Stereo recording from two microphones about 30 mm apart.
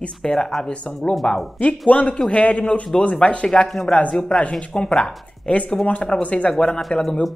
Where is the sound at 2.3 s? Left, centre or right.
Left.